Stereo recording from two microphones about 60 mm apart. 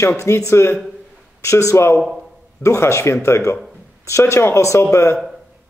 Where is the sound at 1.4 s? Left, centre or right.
Left.